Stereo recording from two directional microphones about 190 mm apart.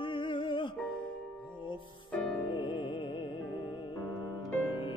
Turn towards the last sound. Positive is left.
turn(degrees=25)  # may be behind; listen again after turning